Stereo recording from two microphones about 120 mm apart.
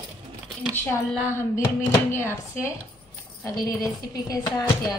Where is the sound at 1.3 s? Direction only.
20° left (ahead or behind).